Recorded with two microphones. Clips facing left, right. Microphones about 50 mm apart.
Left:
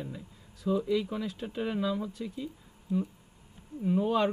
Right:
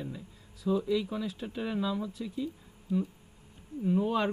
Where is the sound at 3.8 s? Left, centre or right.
Centre.